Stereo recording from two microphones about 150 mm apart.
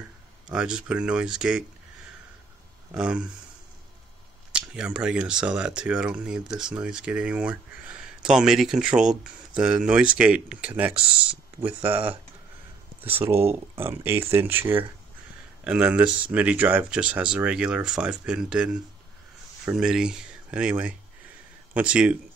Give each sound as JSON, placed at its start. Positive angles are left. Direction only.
{"t": 0.5, "sound": "speech", "side_deg": -5}
{"t": 2.9, "sound": "speech", "side_deg": -5}
{"t": 4.5, "sound": "speech", "side_deg": -5}
{"t": 13.2, "sound": "speech", "side_deg": -15}